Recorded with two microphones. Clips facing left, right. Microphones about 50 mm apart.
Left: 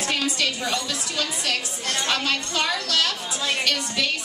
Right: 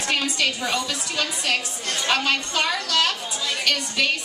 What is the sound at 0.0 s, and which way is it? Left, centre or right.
A woman's voice, centre.